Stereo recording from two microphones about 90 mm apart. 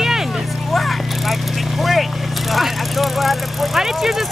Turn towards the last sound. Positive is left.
turn(degrees=-5)  # may be behind; listen again after turning